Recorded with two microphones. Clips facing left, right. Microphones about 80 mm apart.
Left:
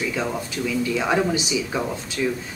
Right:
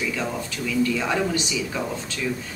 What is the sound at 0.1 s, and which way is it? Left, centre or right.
A woman's voice, centre.